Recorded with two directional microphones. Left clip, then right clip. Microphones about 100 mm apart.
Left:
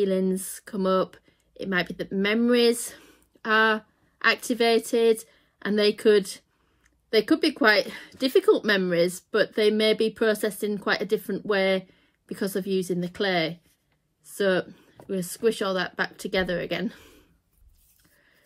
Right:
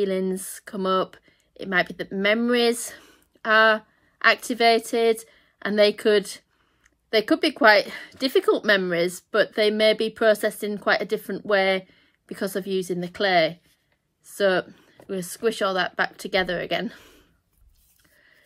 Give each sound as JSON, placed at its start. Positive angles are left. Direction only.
{"t": 0.0, "sound": "speech", "side_deg": -25}
{"t": 14.2, "sound": "a sound", "side_deg": -30}
{"t": 15.0, "sound": "speech", "side_deg": -35}